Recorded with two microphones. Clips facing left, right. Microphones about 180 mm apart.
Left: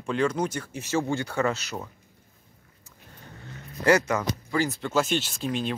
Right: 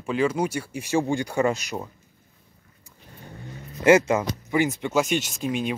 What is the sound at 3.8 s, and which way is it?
Speech, 25° right (ahead or behind).